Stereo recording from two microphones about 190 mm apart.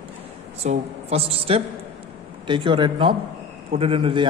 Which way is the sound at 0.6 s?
35° right (ahead or behind).